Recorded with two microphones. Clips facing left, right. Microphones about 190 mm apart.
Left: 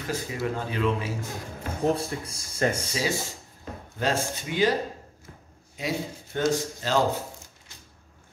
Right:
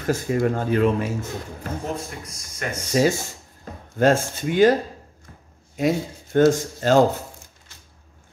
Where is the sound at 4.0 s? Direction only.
50° right (ahead or behind).